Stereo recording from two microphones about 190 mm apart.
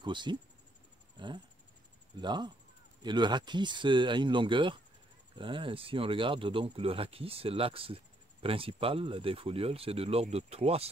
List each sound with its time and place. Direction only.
0.0 s speech: 25° right (ahead or behind)
1.1 s a sound: 25° right (ahead or behind)
2.1 s speech: 25° right (ahead or behind)